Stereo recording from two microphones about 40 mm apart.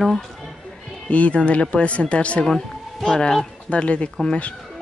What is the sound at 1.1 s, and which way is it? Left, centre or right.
Speech, left.